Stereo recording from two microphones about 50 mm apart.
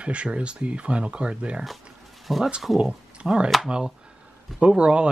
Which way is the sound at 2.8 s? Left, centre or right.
Right.